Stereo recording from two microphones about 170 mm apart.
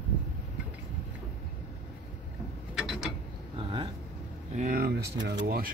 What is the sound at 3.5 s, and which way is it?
Vehicle, 30° right (ahead or behind).